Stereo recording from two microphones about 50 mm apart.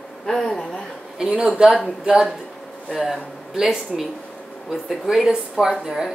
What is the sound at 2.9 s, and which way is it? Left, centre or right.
A woman's voice, centre.